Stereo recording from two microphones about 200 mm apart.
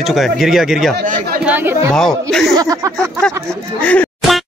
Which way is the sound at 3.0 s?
5° left (ahead or behind).